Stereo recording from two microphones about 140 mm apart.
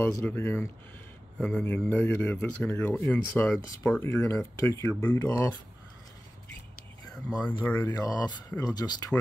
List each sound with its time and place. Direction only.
0.0 s speech: 15° left (ahead or behind)
7.6 s speech: 15° left (ahead or behind)
7.9 s speech: 25° left (ahead or behind)